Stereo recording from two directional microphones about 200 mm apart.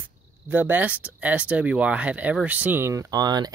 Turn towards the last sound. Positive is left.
turn(degrees=-20)  # may be behind; listen again after turning